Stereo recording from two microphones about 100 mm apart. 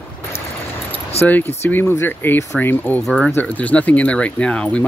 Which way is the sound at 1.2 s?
90° left.